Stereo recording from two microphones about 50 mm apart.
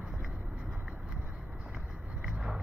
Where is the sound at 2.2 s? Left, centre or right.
Centre.